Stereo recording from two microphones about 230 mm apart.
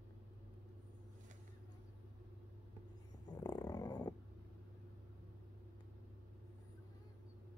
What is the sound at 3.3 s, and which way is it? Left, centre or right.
Dog, centre.